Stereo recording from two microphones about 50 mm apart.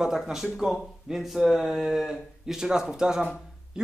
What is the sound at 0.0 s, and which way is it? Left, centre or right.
Speech, centre.